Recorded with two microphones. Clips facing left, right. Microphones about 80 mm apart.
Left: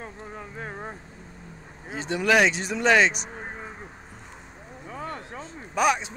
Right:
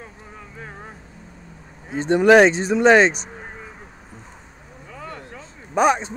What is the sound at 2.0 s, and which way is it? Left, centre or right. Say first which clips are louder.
Speech: right 9 dB; right.